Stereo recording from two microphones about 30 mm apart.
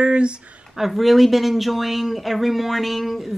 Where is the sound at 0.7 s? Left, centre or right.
Centre.